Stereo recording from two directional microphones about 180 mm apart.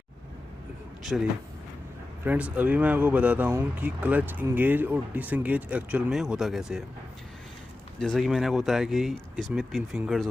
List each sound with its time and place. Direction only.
1.1 s speech: 5° right (ahead or behind)
2.5 s speech: 10° right (ahead or behind)
8.0 s speech: centre (ahead or behind)